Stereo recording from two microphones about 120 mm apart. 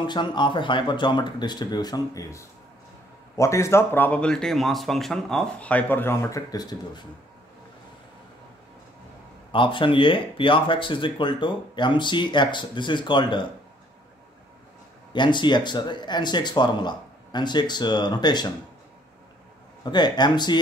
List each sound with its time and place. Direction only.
0.0 s speech: 40° left (ahead or behind)
9.5 s speech: 45° left (ahead or behind)
15.1 s speech: 40° left (ahead or behind)
19.8 s speech: 35° left (ahead or behind)